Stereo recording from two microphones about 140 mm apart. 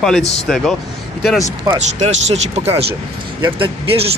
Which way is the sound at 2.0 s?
55° right (ahead or behind).